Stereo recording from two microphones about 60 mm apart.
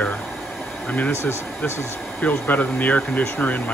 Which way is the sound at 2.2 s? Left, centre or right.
Left.